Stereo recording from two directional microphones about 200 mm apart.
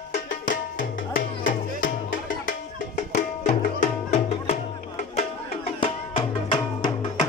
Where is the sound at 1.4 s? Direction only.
40° left (ahead or behind).